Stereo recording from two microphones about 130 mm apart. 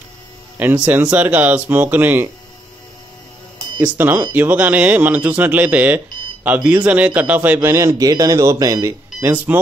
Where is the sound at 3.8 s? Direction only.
15° right (ahead or behind).